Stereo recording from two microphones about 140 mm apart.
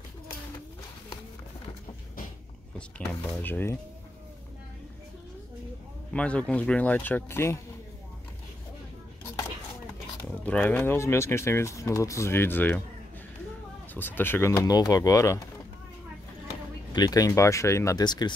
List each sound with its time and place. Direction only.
3.4 s speech: 15° left (ahead or behind)
6.1 s speech: 10° left (ahead or behind)
10.4 s speech: 10° left (ahead or behind)
13.9 s speech: 15° left (ahead or behind)
16.9 s speech: 25° left (ahead or behind)